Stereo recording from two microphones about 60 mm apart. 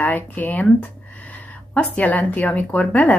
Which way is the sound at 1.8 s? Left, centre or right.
Left.